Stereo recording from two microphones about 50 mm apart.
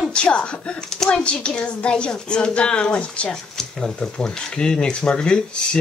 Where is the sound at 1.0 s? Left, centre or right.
Centre.